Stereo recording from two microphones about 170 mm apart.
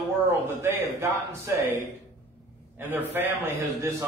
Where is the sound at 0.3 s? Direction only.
15° right (ahead or behind).